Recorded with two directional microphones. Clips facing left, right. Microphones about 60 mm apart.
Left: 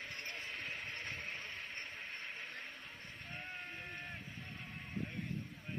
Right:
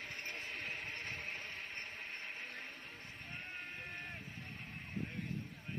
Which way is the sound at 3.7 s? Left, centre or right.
Centre.